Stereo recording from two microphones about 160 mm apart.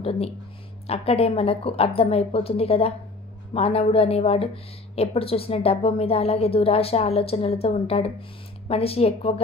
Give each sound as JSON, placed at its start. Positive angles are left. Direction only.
{"t": 0.8, "sound": "a woman's voice", "side_deg": 40}